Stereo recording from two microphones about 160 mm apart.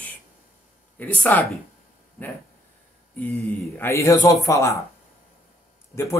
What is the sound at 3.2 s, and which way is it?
Speech, 10° left (ahead or behind).